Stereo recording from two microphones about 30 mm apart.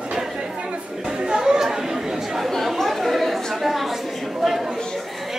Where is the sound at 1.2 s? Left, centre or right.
Right.